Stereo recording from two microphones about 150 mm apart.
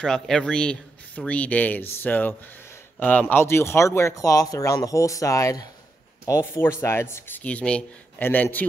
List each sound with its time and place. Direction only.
0.0 s speech: 5° left (ahead or behind)